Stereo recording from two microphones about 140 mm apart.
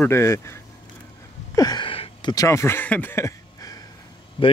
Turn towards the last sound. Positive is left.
turn(degrees=35)  # may be behind; listen again after turning